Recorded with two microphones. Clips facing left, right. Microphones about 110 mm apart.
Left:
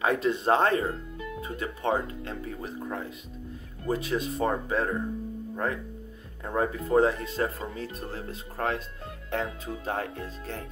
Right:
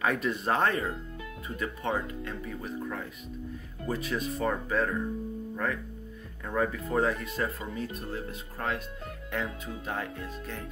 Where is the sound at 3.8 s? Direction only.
30° left (ahead or behind).